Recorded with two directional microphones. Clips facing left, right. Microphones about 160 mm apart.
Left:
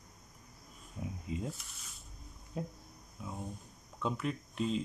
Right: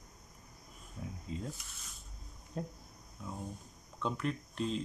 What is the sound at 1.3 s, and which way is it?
Speech, 15° left (ahead or behind).